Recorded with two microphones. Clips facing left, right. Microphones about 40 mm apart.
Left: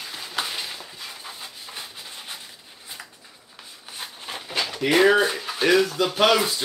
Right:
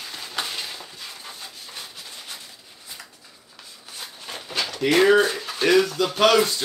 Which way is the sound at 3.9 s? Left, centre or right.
Centre.